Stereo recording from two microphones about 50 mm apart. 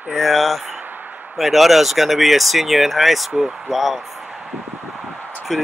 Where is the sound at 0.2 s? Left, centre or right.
Centre.